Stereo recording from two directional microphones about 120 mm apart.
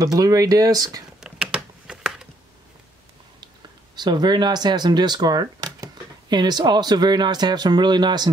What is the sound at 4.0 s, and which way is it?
Speech, 35° right (ahead or behind).